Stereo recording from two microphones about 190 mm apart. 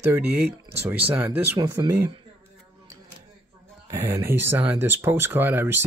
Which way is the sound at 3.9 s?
15° right (ahead or behind).